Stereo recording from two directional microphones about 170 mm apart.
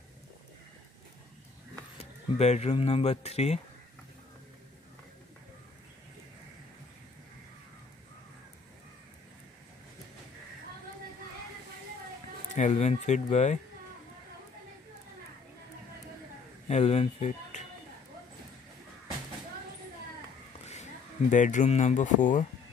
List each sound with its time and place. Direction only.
2.0 s a sound: 40° left (ahead or behind)
2.7 s speech: 35° left (ahead or behind)
12.5 s speech: 45° left (ahead or behind)
16.6 s speech: 40° left (ahead or behind)
21.3 s speech: 45° left (ahead or behind)